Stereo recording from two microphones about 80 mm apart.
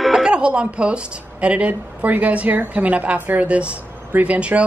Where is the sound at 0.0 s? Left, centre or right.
Centre.